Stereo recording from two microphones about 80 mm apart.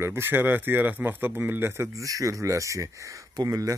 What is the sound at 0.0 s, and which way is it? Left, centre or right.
Speech, right.